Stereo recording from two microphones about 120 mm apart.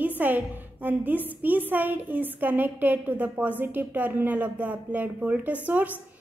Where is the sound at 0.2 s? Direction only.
15° right (ahead or behind).